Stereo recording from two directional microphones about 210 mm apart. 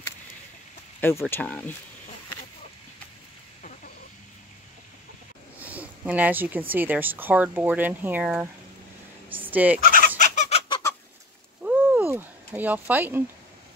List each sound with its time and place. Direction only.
1.2 s speech: 5° left (ahead or behind)
5.6 s a sound: 5° right (ahead or behind)
6.7 s speech: 10° right (ahead or behind)
9.3 s fowl: 10° right (ahead or behind)
9.8 s fowl: 40° left (ahead or behind)
11.6 s a sound: 10° right (ahead or behind)